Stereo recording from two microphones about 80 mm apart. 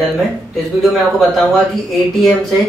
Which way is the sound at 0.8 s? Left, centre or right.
Centre.